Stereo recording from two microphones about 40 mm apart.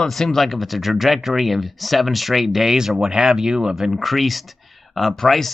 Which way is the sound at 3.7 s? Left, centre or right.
Centre.